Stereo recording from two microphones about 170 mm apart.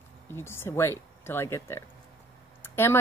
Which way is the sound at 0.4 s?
15° left (ahead or behind).